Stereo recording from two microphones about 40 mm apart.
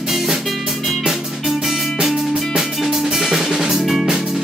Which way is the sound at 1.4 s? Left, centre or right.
Centre.